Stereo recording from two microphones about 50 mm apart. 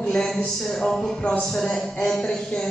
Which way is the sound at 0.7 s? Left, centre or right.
Centre.